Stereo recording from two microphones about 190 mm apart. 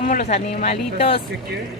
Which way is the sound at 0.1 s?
40° left (ahead or behind).